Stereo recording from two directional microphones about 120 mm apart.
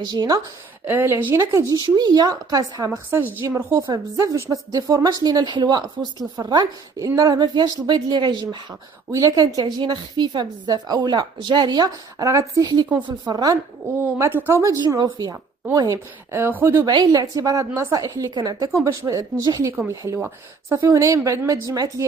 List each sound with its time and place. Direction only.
0.0 s a woman's voice: 35° right (ahead or behind)
0.8 s a woman's voice: 20° right (ahead or behind)
14.1 s a woman's voice: 20° right (ahead or behind)
16.8 s a woman's voice: 35° right (ahead or behind)